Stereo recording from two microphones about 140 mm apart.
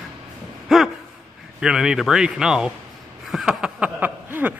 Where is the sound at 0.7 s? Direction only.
Centre (ahead or behind).